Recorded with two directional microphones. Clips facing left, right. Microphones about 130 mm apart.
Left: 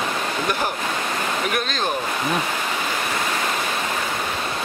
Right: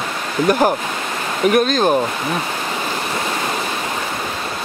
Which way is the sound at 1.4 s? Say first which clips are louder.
Right 10 dB; 40° right (ahead or behind).